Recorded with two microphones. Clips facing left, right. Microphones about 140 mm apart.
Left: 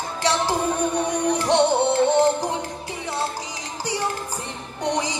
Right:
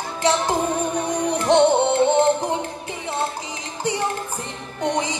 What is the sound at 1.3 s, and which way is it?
Music, 20° right (ahead or behind).